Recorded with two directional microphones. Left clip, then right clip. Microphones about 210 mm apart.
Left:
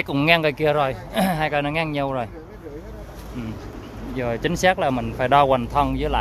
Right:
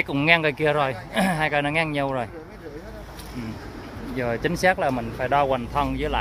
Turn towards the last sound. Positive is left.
turn(degrees=10)  # may be behind; listen again after turning